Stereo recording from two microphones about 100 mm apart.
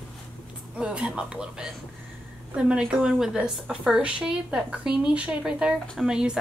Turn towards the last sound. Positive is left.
turn(degrees=-5)  # may be behind; listen again after turning